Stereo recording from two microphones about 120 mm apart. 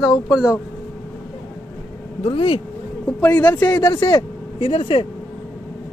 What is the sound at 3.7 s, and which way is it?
Speech, 30° left (ahead or behind).